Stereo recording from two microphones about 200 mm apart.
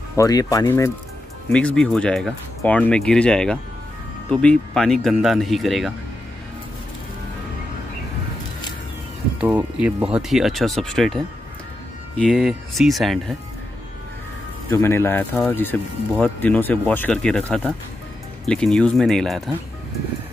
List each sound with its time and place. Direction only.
0.1 s speech: 15° left (ahead or behind); by 5.9 s centre (ahead or behind)
9.4 s speech: 5° right (ahead or behind)
12.3 s speech: centre (ahead or behind)
14.7 s speech: 10° left (ahead or behind)